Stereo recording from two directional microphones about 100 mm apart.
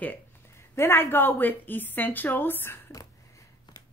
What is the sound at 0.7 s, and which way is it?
Speech, 25° left (ahead or behind).